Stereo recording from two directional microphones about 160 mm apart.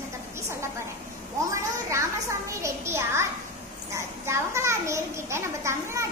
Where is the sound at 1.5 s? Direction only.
20° right (ahead or behind).